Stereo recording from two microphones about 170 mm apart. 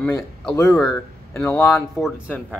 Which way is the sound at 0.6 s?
5° left (ahead or behind).